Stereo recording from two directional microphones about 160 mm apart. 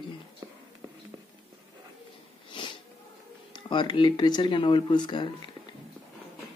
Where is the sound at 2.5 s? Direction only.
30° left (ahead or behind).